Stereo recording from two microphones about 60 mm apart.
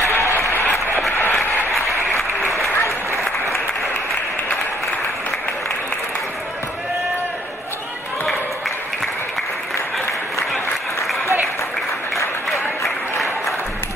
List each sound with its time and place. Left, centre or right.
0.3 s applause: left
12.8 s applause: centre